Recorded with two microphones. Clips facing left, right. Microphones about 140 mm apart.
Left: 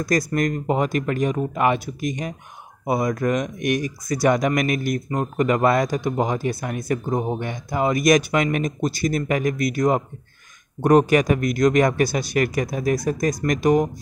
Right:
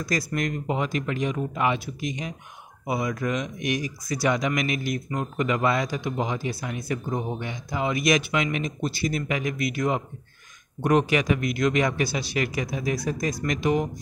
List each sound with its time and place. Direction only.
0.0 s speech: 45° left (ahead or behind)